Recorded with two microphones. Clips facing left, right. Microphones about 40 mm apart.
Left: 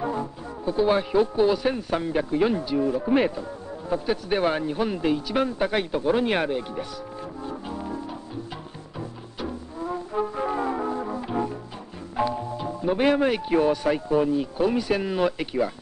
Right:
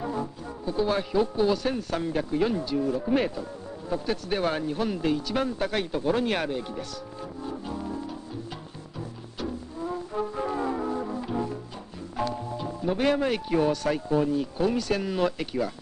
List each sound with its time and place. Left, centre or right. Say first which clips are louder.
0.0 s speech: left 3 dB; centre
7.4 s music: even; centre
9.4 s music: left 1 dB; centre
12.2 s speech: left 4 dB; centre